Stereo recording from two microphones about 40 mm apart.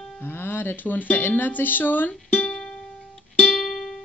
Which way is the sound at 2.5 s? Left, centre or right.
Centre.